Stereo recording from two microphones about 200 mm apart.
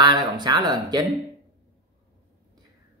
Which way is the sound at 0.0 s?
20° right (ahead or behind).